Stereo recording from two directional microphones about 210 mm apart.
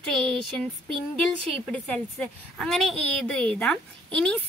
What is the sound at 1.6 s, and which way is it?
A woman's voice, 5° left (ahead or behind).